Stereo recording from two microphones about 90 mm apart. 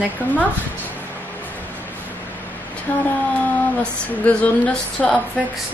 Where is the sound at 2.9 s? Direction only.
20° left (ahead or behind).